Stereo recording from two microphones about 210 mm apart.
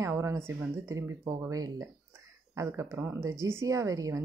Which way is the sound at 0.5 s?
10° right (ahead or behind).